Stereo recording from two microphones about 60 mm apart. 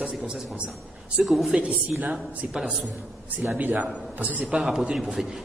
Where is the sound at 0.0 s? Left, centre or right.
Centre.